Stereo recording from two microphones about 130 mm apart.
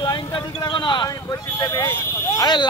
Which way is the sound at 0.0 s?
30° left (ahead or behind).